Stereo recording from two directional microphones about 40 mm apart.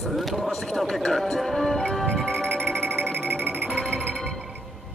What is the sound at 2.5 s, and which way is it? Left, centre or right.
Music, right.